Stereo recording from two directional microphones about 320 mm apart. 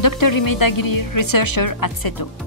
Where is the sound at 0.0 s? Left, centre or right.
Left.